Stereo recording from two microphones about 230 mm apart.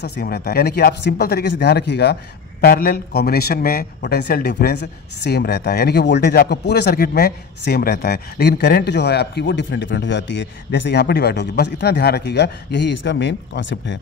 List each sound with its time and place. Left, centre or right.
0.0 s speech: left